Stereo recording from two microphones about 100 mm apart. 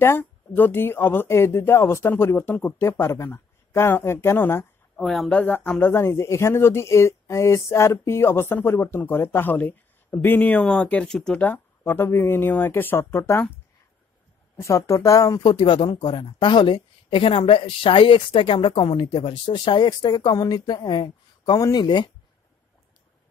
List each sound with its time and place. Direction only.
0.0 s speech: 20° left (ahead or behind)
4.9 s speech: centre (ahead or behind)
5.3 s speech: 15° left (ahead or behind)
11.4 s speech: 20° left (ahead or behind)
14.6 s speech: 30° left (ahead or behind)
15.4 s a woman's voice: 55° left (ahead or behind)